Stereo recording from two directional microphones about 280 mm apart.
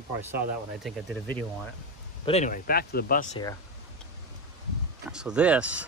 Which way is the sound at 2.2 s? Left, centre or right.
Left.